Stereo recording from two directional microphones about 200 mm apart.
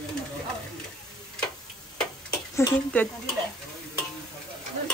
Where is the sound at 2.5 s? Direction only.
10° left (ahead or behind).